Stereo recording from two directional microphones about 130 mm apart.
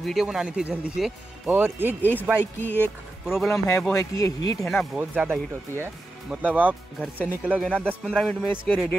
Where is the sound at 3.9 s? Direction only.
25° left (ahead or behind).